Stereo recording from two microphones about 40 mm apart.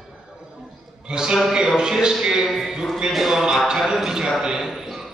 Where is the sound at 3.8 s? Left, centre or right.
Centre.